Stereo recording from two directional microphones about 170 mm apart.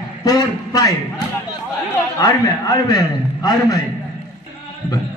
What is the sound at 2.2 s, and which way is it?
A man's voice, 20° left (ahead or behind).